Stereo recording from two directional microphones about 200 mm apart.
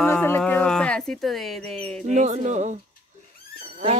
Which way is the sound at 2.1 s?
35° right (ahead or behind).